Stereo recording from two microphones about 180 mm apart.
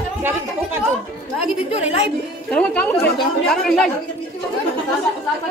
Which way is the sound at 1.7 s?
35° left (ahead or behind).